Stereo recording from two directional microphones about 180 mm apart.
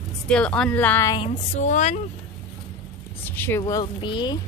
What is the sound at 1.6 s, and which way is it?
Speech, 45° left (ahead or behind).